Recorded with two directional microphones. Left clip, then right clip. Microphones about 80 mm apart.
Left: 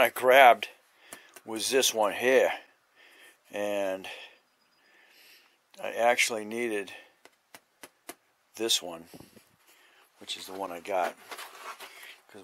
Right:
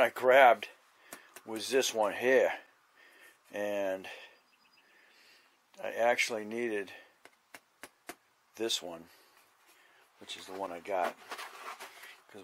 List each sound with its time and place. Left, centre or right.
0.0 s speech: left
7.2 s chop: centre
8.5 s speech: left
11.2 s a sound: centre